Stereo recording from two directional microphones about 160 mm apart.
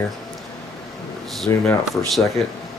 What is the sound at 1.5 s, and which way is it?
Speech, 20° left (ahead or behind).